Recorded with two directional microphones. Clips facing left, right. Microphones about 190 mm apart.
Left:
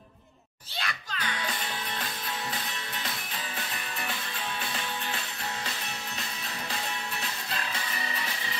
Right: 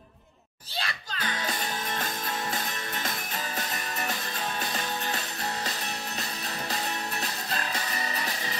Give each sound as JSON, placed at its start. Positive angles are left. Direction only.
{"t": 0.7, "sound": "music", "side_deg": -35}
{"t": 3.5, "sound": "music", "side_deg": -45}
{"t": 6.7, "sound": "music", "side_deg": -40}